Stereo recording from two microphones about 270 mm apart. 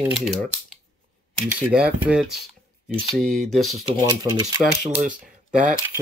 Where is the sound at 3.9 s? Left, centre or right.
Centre.